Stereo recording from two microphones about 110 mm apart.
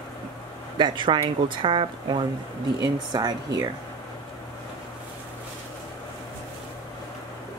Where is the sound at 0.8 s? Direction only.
45° right (ahead or behind).